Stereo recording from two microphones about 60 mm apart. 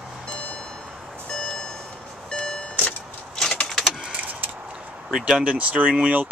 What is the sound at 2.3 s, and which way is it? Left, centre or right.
Vehicle, centre.